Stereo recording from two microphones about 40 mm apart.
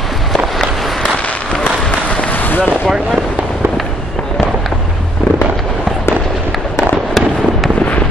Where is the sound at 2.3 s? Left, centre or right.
Left.